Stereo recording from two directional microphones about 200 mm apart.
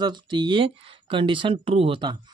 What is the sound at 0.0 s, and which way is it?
Speech, 20° right (ahead or behind).